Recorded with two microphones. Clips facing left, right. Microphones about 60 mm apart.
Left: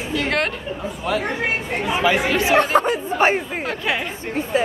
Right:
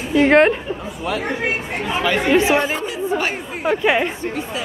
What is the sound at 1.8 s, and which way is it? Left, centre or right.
Speech, centre.